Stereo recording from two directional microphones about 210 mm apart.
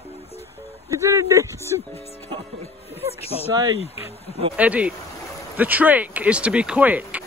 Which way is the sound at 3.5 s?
20° right (ahead or behind).